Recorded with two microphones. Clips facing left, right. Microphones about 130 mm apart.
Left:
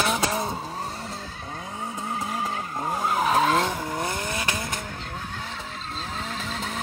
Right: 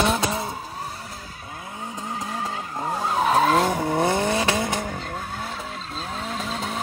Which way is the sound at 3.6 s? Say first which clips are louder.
Right 6 dB; 50° right (ahead or behind).